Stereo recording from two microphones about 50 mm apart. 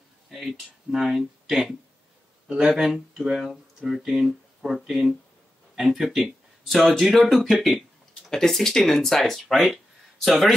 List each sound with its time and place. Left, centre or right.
0.3 s speech: centre
2.4 s speech: centre
2.7 s a man's voice: centre